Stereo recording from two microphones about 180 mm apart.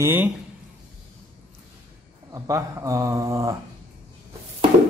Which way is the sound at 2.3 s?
15° right (ahead or behind).